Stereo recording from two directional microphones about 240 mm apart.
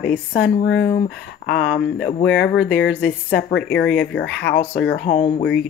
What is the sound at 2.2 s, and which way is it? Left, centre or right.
Speech, left.